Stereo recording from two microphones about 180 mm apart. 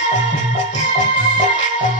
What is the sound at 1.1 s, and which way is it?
Music, 45° left (ahead or behind).